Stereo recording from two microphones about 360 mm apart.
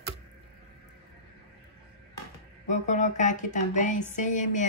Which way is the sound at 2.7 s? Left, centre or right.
Centre.